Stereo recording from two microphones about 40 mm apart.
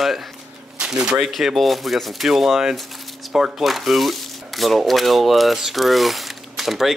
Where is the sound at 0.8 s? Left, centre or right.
Right.